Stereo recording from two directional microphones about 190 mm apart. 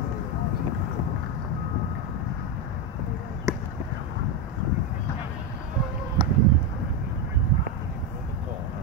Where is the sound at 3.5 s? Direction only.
15° right (ahead or behind).